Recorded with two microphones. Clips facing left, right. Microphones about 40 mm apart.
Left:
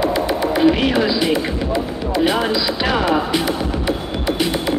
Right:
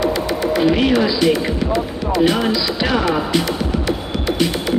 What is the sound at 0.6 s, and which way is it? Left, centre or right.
Speech, centre.